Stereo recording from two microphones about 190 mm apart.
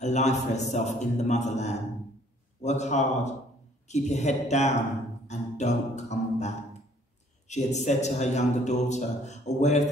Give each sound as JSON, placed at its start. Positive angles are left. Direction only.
{"t": 0.0, "sound": "a man's voice", "side_deg": 35}
{"t": 5.3, "sound": "music", "side_deg": 35}
{"t": 7.4, "sound": "a man's voice", "side_deg": 35}